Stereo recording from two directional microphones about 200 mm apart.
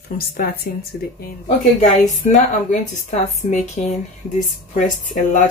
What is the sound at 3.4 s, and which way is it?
Speech, 30° left (ahead or behind).